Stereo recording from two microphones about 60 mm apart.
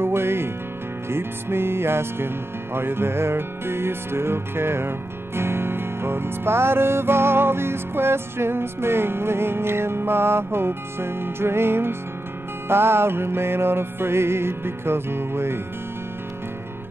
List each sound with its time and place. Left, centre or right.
0.0 s music: right